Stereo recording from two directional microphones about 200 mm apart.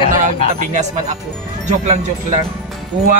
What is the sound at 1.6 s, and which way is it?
Speech, 35° right (ahead or behind).